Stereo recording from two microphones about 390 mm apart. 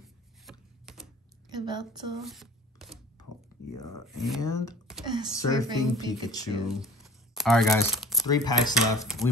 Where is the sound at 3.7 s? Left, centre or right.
Left.